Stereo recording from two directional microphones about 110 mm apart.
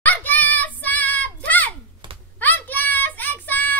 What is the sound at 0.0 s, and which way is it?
Child singing, 15° left (ahead or behind).